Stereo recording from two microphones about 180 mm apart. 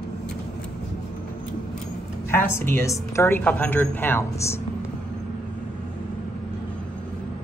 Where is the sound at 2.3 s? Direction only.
15° left (ahead or behind).